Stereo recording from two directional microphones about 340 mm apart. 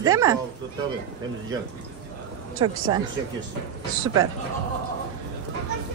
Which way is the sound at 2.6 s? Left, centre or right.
Centre.